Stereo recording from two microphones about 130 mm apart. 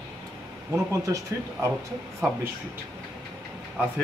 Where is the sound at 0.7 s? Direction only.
25° right (ahead or behind).